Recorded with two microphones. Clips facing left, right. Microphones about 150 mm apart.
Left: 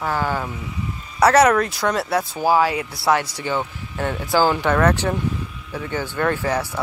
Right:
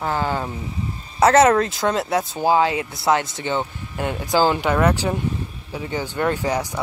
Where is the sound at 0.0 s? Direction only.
20° right (ahead or behind).